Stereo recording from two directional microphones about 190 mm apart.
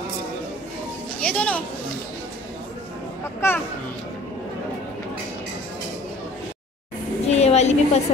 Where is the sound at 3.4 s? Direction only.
10° left (ahead or behind).